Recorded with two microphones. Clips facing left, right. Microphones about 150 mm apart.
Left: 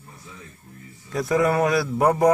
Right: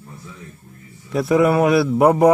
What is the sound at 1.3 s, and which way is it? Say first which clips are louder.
Speech: right 5 dB; 20° right (ahead or behind).